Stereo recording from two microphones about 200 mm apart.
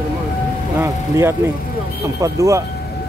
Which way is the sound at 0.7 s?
15° right (ahead or behind).